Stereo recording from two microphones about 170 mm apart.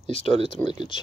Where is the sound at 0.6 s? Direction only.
15° left (ahead or behind).